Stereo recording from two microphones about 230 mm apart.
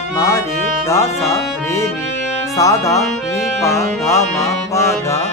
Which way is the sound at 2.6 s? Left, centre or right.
Centre.